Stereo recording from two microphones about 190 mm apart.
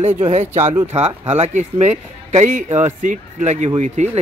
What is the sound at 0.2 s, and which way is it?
A man's voice, 35° right (ahead or behind).